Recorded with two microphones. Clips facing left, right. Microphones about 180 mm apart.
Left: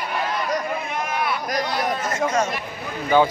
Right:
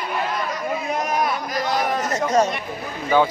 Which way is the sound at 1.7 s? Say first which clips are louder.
Right 1 dB; 45° right (ahead or behind).